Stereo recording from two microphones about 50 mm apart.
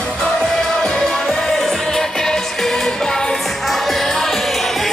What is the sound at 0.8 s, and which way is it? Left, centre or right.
Music, centre.